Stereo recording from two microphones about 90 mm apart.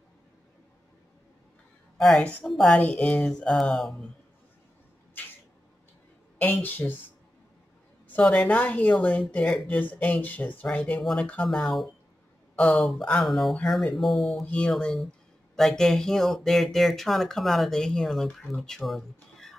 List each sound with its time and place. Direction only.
2.0 s speech: 10° left (ahead or behind)
2.8 s speech: 15° left (ahead or behind)
6.3 s speech: 20° left (ahead or behind)
8.1 s speech: 15° left (ahead or behind)
11.4 s speech: centre (ahead or behind)
12.5 s speech: 15° left (ahead or behind)
14.4 s speech: 15° left (ahead or behind)